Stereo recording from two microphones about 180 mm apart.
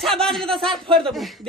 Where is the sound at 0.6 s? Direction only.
30° right (ahead or behind).